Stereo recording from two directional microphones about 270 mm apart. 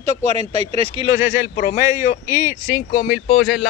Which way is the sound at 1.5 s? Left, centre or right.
Left.